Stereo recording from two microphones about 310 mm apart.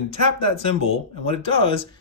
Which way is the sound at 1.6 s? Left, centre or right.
Centre.